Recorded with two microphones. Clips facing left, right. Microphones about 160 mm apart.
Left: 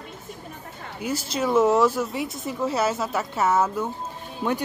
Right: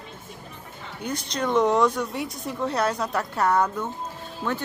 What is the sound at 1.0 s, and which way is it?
Speech, 5° left (ahead or behind).